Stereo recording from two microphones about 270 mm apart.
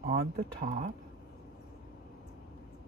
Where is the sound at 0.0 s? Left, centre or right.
Right.